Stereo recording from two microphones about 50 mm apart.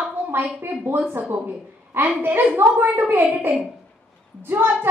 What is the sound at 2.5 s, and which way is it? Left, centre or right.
A child's voice, right.